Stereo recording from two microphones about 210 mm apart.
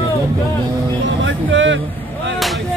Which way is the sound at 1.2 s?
60° right (ahead or behind).